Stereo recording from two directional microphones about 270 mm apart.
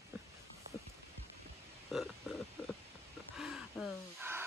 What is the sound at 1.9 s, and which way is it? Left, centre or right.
Burping, centre.